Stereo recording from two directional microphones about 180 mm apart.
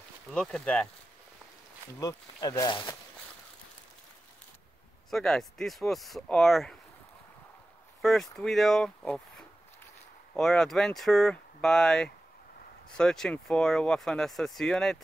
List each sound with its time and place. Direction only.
0.3 s speech: 5° left (ahead or behind)
2.0 s speech: 20° left (ahead or behind)
5.1 s speech: centre (ahead or behind)
8.0 s speech: centre (ahead or behind)